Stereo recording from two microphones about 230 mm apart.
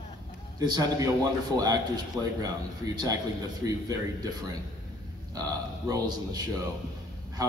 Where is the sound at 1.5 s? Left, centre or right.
Centre.